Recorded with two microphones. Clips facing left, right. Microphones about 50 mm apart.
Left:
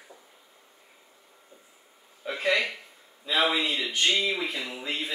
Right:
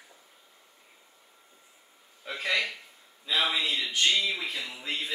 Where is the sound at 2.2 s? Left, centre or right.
Centre.